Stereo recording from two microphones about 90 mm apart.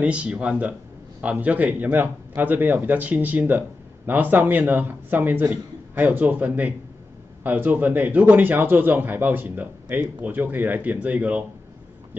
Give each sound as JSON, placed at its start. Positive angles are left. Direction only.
{"t": 0.0, "sound": "a man's voice", "side_deg": -15}